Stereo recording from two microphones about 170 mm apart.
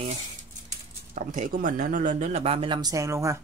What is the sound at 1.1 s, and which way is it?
Speech, 45° right (ahead or behind).